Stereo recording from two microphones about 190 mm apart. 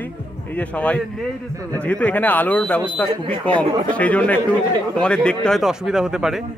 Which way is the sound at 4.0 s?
5° left (ahead or behind).